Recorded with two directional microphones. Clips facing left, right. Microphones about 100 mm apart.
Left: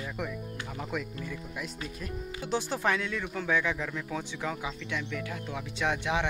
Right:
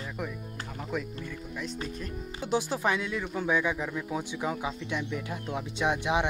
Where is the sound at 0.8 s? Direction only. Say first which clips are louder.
Right 1 dB; centre (ahead or behind).